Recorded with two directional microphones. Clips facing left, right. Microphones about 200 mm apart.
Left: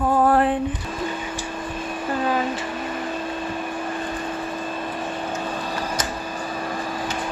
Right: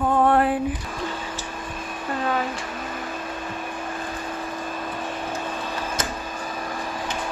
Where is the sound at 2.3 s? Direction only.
5° left (ahead or behind).